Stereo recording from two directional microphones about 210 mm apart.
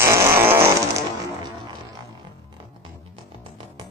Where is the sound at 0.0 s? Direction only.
10° right (ahead or behind).